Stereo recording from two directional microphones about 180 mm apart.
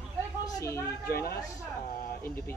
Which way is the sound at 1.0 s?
60° left (ahead or behind).